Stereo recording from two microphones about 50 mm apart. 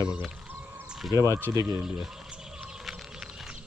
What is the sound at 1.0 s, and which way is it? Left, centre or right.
Speech, centre.